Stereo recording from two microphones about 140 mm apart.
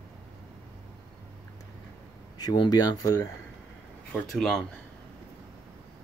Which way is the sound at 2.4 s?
30° left (ahead or behind).